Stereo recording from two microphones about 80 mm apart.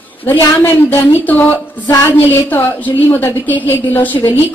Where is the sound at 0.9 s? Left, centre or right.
Left.